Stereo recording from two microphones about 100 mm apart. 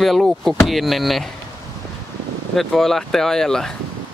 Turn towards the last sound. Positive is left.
turn(degrees=5)  # may be behind; listen again after turning